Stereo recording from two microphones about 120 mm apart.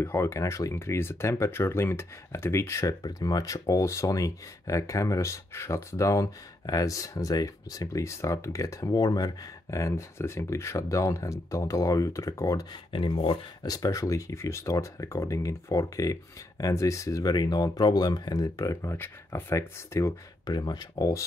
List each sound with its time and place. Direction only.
0.0 s speech: 20° left (ahead or behind)
12.9 s speech: 45° left (ahead or behind)
13.7 s speech: 30° left (ahead or behind)